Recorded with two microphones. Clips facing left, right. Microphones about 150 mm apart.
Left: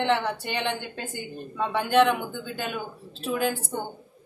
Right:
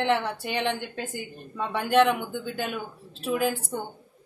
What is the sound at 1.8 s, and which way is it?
Speech, centre (ahead or behind).